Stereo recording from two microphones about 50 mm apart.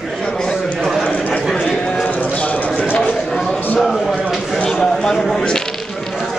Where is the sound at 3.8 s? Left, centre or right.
Centre.